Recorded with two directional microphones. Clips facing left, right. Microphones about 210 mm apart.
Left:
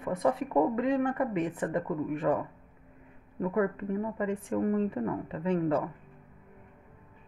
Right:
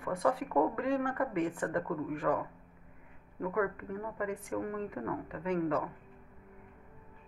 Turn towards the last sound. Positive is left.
turn(degrees=30)  # may be behind; listen again after turning